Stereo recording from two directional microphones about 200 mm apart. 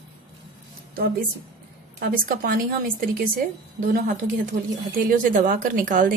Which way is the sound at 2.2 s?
45° right (ahead or behind).